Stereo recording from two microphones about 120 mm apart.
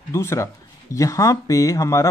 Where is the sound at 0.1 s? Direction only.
25° left (ahead or behind).